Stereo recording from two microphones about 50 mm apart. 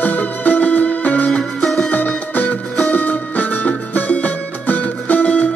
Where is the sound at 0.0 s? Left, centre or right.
Left.